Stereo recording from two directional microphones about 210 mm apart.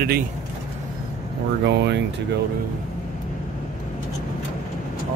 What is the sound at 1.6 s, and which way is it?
Speech, 55° right (ahead or behind).